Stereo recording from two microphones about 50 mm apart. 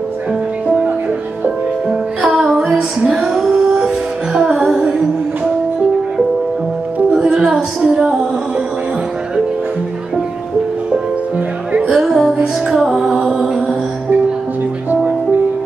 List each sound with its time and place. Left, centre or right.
0.7 s music: right
2.2 s music: centre
7.3 s a sound: centre
11.9 s music: centre